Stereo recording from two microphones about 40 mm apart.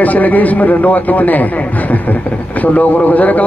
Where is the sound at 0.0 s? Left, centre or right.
Left.